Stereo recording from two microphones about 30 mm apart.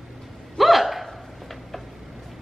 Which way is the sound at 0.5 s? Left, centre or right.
Centre.